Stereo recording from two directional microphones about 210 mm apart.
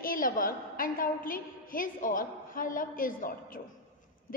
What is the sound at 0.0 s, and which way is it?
A woman's voice, 40° left (ahead or behind).